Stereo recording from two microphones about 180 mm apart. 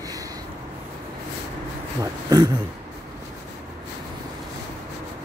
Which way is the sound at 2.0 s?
20° right (ahead or behind).